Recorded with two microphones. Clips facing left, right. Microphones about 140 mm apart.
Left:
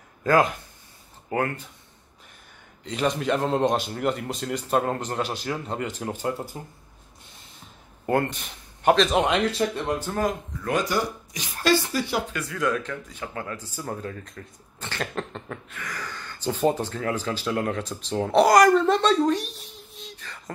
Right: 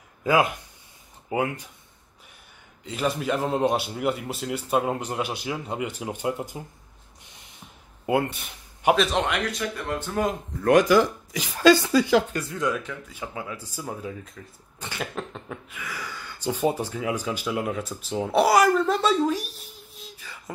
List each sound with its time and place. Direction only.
0.2 s speech: 10° right (ahead or behind)
2.8 s speech: 5° right (ahead or behind)
8.1 s a man's voice: 5° right (ahead or behind)
9.2 s speech: 25° left (ahead or behind)
9.8 s speech: 10° left (ahead or behind)
10.7 s speech: 80° right
12.3 s speech: 30° right (ahead or behind)
12.6 s speech: 10° right (ahead or behind)